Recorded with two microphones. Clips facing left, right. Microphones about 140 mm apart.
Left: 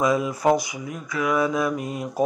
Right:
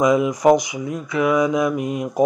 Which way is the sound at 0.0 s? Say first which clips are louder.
Right 5 dB; 20° right (ahead or behind).